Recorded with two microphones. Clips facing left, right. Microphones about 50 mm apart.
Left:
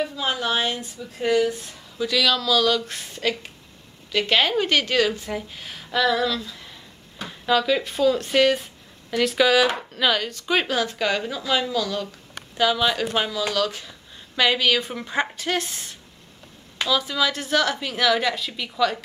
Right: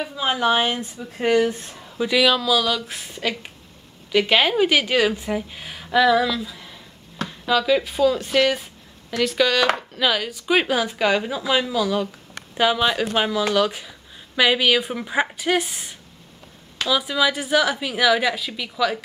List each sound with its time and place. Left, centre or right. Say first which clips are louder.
0.0 s a woman's voice: right 3 dB; centre
1.3 s speech: right 2 dB; right
2.0 s speech: right 3 dB; centre
7.2 s speech: right 1 dB; centre